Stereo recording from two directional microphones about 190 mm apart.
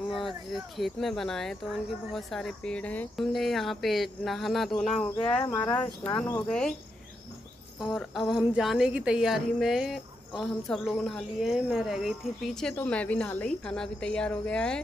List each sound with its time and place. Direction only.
0.1 s speech: centre (ahead or behind)
5.3 s speech: 15° left (ahead or behind)
5.8 s speech: 5° left (ahead or behind)
7.8 s speech: centre (ahead or behind)